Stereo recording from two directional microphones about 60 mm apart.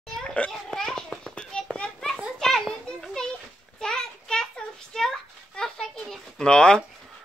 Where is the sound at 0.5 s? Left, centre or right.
Centre.